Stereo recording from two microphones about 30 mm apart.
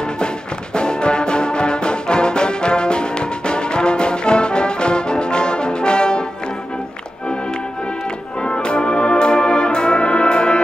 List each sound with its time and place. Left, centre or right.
0.7 s music: left
8.4 s brass instrument: left